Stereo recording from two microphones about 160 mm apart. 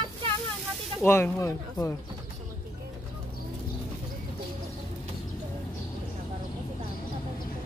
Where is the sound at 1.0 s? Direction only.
15° left (ahead or behind).